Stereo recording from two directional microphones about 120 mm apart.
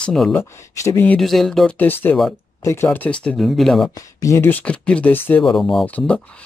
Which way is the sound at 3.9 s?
25° left (ahead or behind).